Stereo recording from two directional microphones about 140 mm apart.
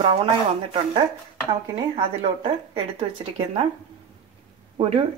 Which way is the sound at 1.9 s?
40° right (ahead or behind).